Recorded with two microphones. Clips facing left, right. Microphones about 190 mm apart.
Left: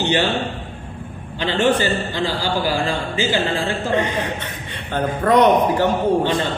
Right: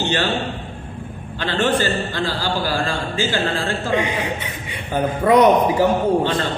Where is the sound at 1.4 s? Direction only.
15° left (ahead or behind).